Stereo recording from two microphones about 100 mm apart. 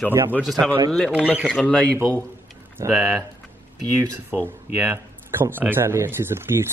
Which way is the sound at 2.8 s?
30° right (ahead or behind).